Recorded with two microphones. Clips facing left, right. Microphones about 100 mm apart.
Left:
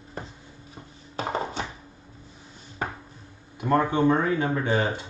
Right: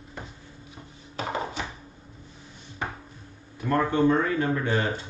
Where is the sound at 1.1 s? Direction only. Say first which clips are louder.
Left 2 dB; 35° left (ahead or behind).